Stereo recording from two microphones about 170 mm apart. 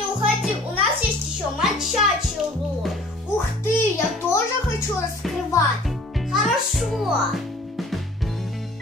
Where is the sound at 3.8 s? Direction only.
15° left (ahead or behind).